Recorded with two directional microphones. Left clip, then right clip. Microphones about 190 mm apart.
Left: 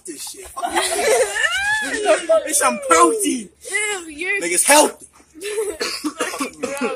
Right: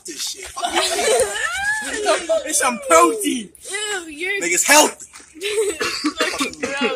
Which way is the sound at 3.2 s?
45° right (ahead or behind).